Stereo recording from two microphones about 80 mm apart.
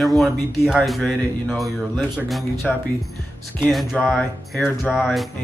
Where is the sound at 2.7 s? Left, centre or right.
Centre.